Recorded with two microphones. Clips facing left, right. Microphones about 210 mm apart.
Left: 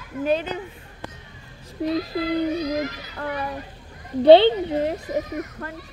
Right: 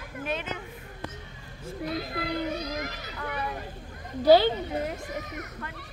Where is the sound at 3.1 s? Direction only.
50° left (ahead or behind).